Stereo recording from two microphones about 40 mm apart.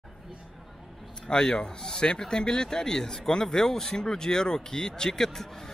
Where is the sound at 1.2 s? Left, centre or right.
Centre.